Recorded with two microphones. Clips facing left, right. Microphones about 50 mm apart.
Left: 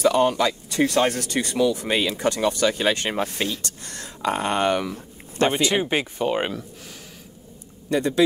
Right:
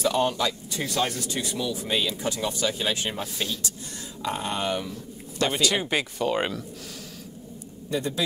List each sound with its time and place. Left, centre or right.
0.1 s speech: left
0.7 s speech: left
1.9 s speech: left
5.5 s speech: left
7.9 s speech: left